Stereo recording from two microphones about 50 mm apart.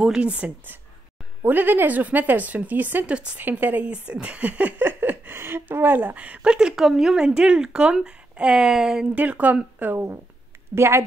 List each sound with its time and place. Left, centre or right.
0.2 s speech: right
1.4 s speech: right
3.1 s speech: right
3.3 s speech: right
4.7 s speech: right
6.1 s speech: right
9.1 s speech: right
9.9 s speech: right